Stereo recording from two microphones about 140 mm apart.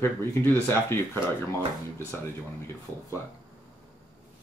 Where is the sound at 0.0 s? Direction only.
15° left (ahead or behind).